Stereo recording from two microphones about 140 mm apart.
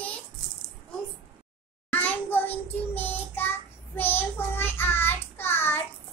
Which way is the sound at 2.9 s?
15° left (ahead or behind).